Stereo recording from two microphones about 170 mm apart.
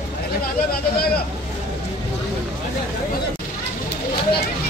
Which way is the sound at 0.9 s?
65° left (ahead or behind).